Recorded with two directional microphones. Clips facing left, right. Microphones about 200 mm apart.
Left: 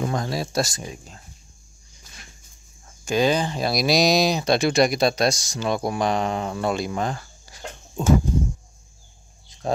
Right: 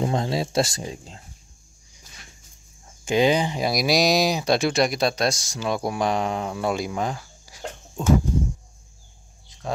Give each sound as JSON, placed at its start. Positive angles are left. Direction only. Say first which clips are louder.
{"t": 0.0, "sound": "speech", "louder": "right 2 dB", "side_deg": -25}
{"t": 3.1, "sound": "speech", "louder": "right 1 dB", "side_deg": -20}